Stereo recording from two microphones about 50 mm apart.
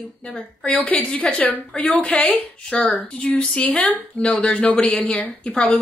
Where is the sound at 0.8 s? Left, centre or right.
Left.